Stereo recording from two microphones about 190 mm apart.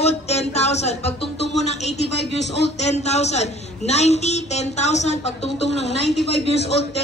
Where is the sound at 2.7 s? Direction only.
35° left (ahead or behind).